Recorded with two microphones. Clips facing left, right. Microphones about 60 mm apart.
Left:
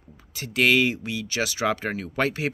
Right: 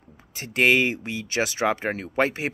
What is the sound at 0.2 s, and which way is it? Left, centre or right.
Speech, right.